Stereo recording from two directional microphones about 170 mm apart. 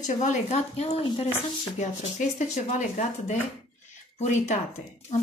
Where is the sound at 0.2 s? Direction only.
45° left (ahead or behind).